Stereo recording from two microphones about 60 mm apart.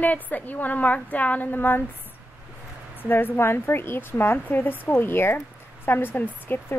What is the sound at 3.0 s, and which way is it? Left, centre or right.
A woman's voice, left.